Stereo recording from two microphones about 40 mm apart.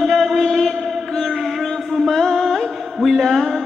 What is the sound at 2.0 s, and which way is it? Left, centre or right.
Music, centre.